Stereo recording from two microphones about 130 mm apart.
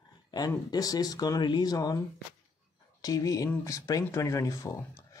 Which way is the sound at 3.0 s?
25° left (ahead or behind).